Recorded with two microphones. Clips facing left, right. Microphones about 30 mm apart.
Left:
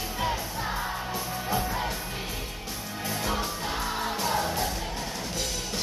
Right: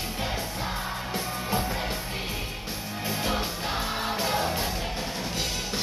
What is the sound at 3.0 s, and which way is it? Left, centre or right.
Music, right.